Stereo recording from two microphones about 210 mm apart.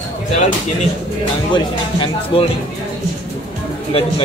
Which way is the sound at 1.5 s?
25° left (ahead or behind).